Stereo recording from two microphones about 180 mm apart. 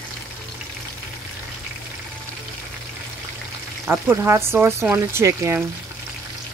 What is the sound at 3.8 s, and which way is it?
Speech, 10° right (ahead or behind).